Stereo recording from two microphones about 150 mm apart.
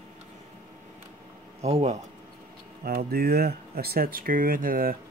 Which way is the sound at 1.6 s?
45° right (ahead or behind).